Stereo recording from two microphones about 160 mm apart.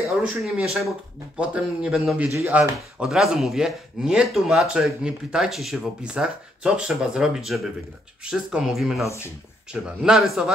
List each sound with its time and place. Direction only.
0.4 s speech: centre (ahead or behind)
3.0 s speech: 5° right (ahead or behind)
9.0 s speech: 15° left (ahead or behind)
9.7 s speech: 5° right (ahead or behind)